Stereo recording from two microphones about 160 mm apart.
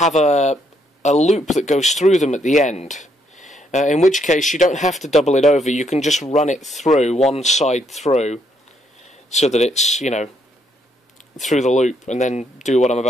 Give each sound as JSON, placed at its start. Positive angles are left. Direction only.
{"t": 0.0, "sound": "speech", "side_deg": 45}
{"t": 11.5, "sound": "speech", "side_deg": 45}